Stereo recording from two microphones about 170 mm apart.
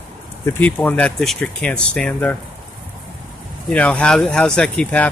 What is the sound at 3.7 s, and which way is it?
Speech, 10° left (ahead or behind).